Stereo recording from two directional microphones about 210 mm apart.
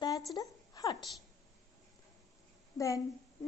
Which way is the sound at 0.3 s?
15° left (ahead or behind).